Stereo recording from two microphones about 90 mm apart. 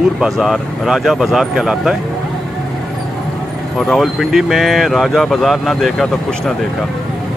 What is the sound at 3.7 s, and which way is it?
Speech, 5° left (ahead or behind).